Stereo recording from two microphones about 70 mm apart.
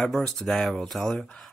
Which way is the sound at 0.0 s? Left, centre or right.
Centre.